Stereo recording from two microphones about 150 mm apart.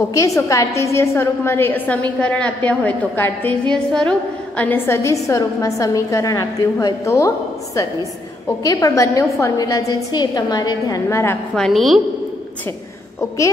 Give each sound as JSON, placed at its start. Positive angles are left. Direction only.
{"t": 0.1, "sound": "a woman's voice", "side_deg": 20}
{"t": 11.5, "sound": "a woman's voice", "side_deg": 0}